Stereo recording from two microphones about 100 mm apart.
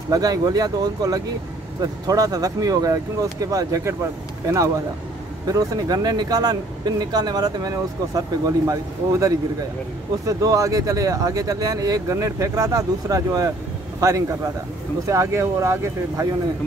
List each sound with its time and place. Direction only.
0.1 s speech: 40° right (ahead or behind)